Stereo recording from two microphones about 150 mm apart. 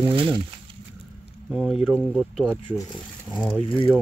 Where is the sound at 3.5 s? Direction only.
10° left (ahead or behind).